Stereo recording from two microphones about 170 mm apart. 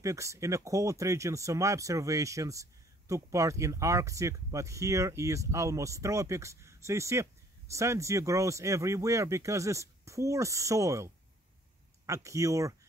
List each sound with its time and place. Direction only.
0.0 s speech: 20° right (ahead or behind)
12.1 s speech: 20° right (ahead or behind)